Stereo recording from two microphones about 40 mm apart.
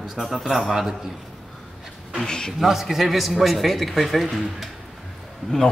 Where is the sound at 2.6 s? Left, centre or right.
Centre.